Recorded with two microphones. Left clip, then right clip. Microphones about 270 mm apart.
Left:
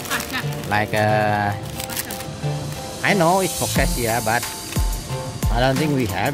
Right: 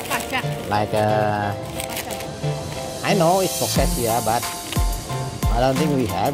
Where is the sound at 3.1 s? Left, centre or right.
Centre.